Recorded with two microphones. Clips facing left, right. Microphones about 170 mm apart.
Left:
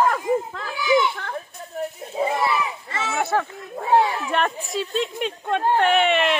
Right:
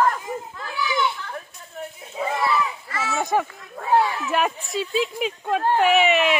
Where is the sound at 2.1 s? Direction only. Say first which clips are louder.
Left 1 dB; 30° left (ahead or behind).